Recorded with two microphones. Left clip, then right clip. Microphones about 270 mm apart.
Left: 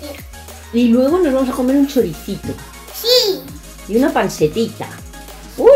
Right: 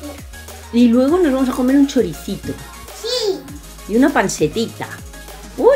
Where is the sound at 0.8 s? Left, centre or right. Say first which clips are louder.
Even; centre.